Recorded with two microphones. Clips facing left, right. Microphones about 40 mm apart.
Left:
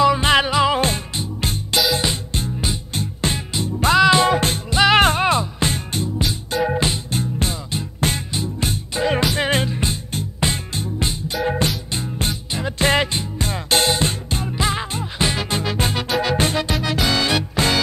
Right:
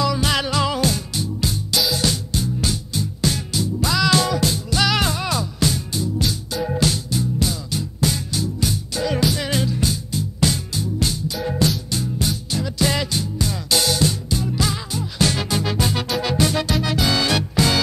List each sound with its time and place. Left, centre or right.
0.0 s music: left
0.7 s music: left
4.0 s music: left
15.5 s music: left